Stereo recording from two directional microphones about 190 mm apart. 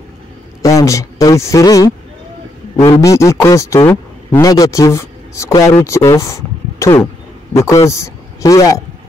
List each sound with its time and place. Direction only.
0.6 s a man's voice: 15° left (ahead or behind)